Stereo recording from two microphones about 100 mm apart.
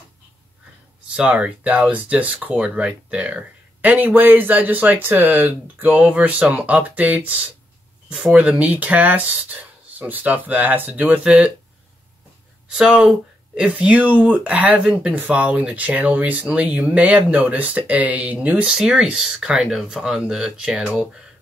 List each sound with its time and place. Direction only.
1.1 s speech: 10° right (ahead or behind)
12.7 s speech: 10° right (ahead or behind)